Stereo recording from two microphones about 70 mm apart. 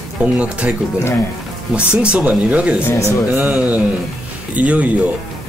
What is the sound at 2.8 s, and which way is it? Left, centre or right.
Speech, left.